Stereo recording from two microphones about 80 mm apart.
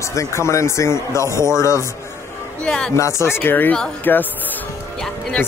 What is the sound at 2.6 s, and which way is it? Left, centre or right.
Speech, centre.